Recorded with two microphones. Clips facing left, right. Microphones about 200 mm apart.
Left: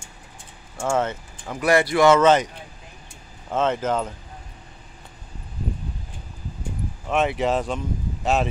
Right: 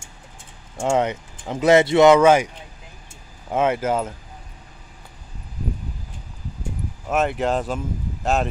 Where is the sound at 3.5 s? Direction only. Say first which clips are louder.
Right 2 dB; 10° right (ahead or behind).